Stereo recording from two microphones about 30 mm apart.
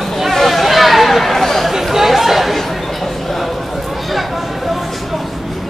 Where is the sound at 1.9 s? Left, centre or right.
Centre.